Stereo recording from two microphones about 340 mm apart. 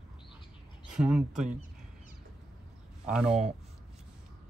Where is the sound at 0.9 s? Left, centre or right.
Centre.